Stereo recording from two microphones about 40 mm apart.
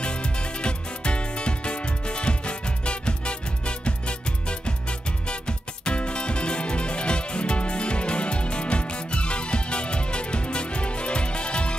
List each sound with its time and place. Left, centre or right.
0.0 s music: left